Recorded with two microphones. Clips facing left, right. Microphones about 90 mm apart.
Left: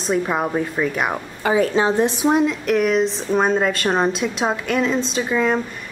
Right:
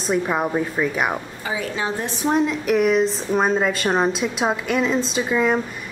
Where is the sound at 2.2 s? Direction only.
Centre (ahead or behind).